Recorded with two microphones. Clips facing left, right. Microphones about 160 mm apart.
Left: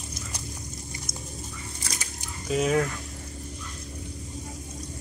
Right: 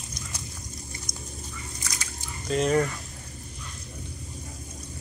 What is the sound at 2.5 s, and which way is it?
Speech, 5° left (ahead or behind).